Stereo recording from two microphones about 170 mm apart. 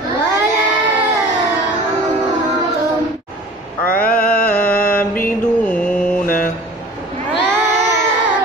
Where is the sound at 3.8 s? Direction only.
60° left (ahead or behind).